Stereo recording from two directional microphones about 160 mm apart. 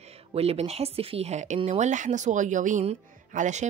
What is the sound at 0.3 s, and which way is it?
Speech, 40° right (ahead or behind).